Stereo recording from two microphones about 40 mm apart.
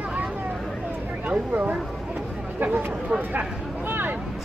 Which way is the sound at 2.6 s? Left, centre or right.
Right.